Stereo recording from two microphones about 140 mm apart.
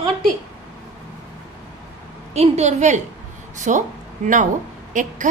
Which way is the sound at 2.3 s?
50° right (ahead or behind).